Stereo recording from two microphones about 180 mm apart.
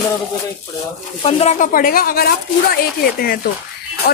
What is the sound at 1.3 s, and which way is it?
A woman's voice, 35° left (ahead or behind).